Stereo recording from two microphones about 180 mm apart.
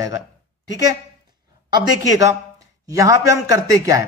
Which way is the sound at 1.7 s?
20° right (ahead or behind).